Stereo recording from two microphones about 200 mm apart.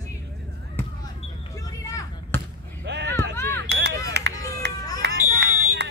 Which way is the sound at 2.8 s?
60° right (ahead or behind).